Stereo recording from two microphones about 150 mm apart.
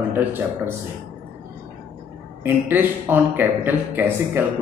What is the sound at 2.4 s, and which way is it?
Speech, 15° right (ahead or behind).